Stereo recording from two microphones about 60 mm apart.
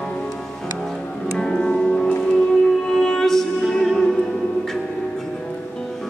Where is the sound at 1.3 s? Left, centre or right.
Centre.